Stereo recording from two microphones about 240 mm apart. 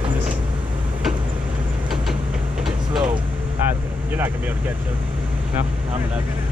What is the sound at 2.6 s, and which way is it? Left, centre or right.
Vehicle, centre.